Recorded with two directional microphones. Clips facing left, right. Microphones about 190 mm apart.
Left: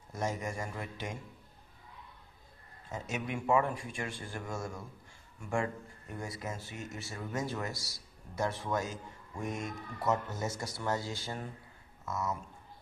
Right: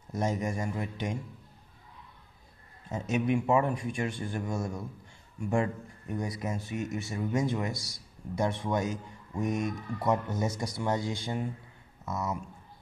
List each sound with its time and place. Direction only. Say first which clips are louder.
0.1 s a man's voice: right 5 dB; 20° right (ahead or behind)
2.9 s a man's voice: right 9 dB; 20° right (ahead or behind)